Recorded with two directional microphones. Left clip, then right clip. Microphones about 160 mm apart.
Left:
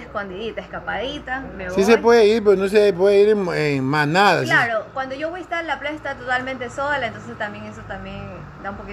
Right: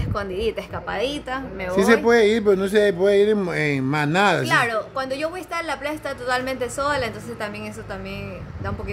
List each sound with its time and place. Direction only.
0.1 s a woman's voice: 40° right (ahead or behind)
1.8 s speech: 5° left (ahead or behind)
4.5 s a woman's voice: 40° right (ahead or behind)